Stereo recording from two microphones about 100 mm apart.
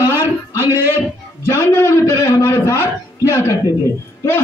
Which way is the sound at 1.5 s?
20° left (ahead or behind).